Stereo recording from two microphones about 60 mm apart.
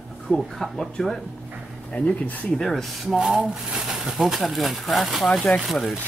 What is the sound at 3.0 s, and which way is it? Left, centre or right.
Speech, centre.